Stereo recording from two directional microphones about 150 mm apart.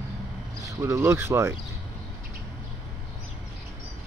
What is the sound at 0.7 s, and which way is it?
Speech, 20° right (ahead or behind).